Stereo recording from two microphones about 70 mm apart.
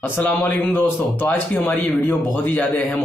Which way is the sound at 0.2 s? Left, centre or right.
Left.